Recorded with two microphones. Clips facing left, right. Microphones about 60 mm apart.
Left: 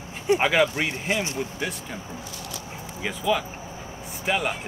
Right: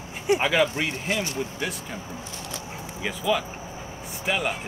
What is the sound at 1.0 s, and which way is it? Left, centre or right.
Speech, left.